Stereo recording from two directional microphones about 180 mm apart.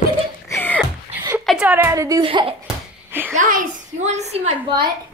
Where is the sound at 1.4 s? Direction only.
5° right (ahead or behind); by 2.5 s 30° right (ahead or behind).